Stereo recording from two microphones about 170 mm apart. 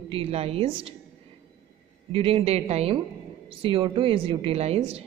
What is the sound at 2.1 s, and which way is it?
A woman's voice, 35° right (ahead or behind).